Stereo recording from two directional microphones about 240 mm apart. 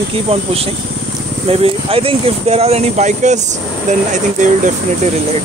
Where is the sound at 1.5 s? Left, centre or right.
Right.